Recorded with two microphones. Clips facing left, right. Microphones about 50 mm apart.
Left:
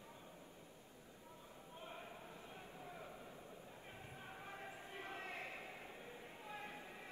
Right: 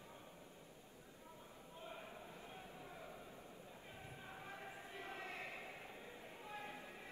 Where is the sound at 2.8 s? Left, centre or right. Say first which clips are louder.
Left 1 dB; centre.